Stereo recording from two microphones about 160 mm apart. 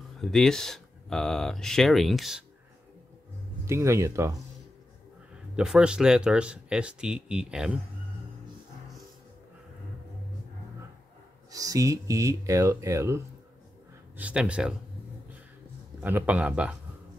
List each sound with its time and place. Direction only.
0.2 s speech: 5° left (ahead or behind)
3.6 s a man's voice: 15° right (ahead or behind)
5.6 s speech: 5° right (ahead or behind)
11.5 s speech: 20° right (ahead or behind)
14.1 s speech: 5° right (ahead or behind)
16.0 s a man's voice: 10° right (ahead or behind)